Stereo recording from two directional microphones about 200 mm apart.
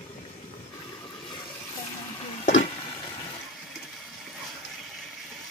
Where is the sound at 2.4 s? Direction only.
35° left (ahead or behind).